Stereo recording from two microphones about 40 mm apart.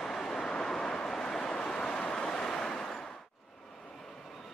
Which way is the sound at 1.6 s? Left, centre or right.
Left.